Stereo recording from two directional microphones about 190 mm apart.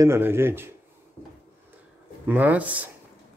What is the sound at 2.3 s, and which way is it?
Speech, 10° right (ahead or behind).